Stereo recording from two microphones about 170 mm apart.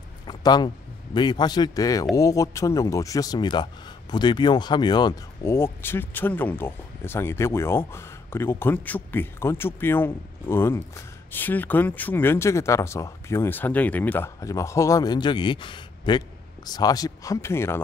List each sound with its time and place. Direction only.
0.3 s speech: 25° left (ahead or behind)